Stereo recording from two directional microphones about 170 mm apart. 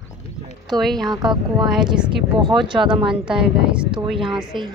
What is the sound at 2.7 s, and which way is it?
Speech, 30° right (ahead or behind).